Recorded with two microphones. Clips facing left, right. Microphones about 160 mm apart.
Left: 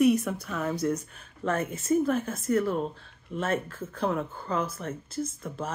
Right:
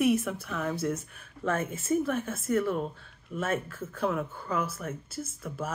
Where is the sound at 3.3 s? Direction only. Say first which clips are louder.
Left 2 dB; 30° left (ahead or behind).